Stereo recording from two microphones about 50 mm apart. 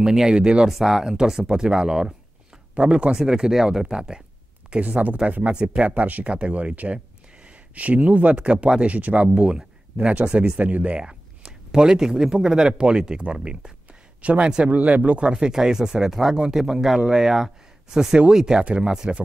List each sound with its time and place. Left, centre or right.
0.0 s speech: centre
0.7 s speech: centre
1.0 s speech: centre
4.6 s speech: right
9.3 s speech: centre
15.3 s speech: centre